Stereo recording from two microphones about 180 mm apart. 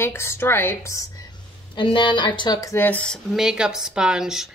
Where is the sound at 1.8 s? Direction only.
30° left (ahead or behind).